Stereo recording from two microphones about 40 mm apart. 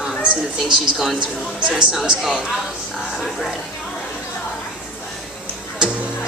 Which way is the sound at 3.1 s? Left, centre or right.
Centre.